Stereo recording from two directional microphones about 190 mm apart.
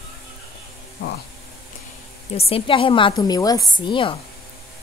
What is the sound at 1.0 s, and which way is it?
Speech, 55° left (ahead or behind).